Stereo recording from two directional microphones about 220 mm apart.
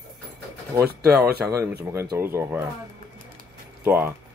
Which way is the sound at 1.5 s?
15° right (ahead or behind).